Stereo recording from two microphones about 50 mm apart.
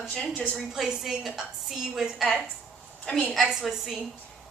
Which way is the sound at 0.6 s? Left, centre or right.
Centre.